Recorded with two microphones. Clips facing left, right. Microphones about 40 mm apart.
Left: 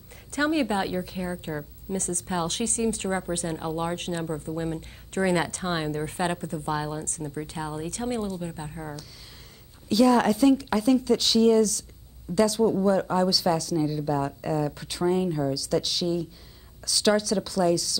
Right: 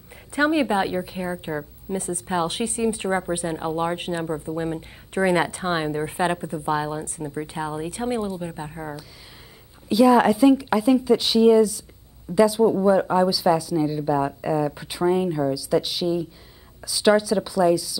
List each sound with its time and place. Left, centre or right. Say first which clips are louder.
0.3 s a woman's voice: right 4 dB; centre